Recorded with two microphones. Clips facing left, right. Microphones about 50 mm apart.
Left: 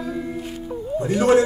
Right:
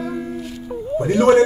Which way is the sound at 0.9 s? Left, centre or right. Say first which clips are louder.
Right 3 dB; right.